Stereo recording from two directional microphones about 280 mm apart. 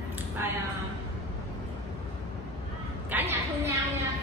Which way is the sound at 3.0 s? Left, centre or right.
Centre.